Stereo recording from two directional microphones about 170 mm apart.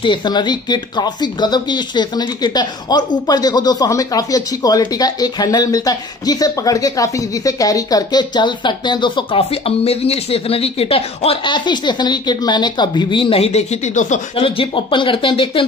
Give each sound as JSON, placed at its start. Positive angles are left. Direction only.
{"t": 0.0, "sound": "speech", "side_deg": 30}
{"t": 14.3, "sound": "speech", "side_deg": 30}